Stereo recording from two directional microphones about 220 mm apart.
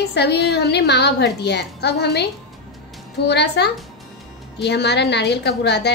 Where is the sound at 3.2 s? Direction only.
50° left (ahead or behind).